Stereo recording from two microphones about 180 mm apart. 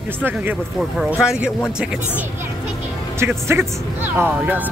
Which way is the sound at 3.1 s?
15° right (ahead or behind).